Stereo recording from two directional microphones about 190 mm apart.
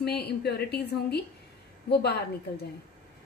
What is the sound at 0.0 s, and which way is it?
A woman's voice, 55° left (ahead or behind).